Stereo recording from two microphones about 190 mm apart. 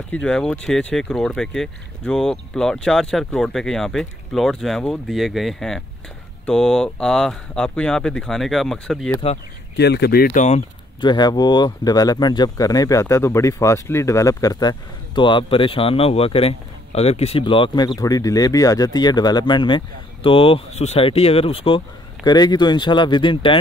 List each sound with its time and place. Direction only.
0.1 s speech: 5° left (ahead or behind)
9.8 s speech: 60° left (ahead or behind)
10.3 s speech: 35° left (ahead or behind)
11.0 s speech: 25° left (ahead or behind)